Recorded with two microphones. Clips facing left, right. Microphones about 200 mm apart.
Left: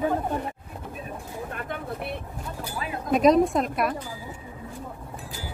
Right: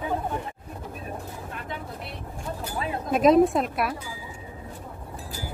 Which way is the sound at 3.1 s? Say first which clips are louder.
Right 1 dB; centre (ahead or behind).